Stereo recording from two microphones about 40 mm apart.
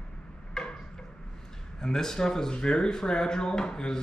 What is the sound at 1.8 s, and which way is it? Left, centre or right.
Speech, centre.